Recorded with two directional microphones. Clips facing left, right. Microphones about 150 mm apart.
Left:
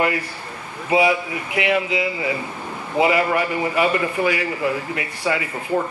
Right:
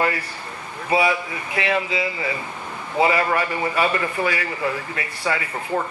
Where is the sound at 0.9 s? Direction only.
20° left (ahead or behind).